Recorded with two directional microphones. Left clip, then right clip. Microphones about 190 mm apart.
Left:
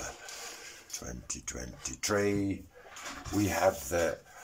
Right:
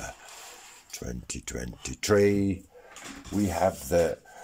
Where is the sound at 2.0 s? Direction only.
50° right (ahead or behind).